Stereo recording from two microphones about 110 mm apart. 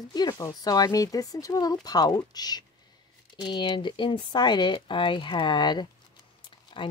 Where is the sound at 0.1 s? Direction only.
40° left (ahead or behind).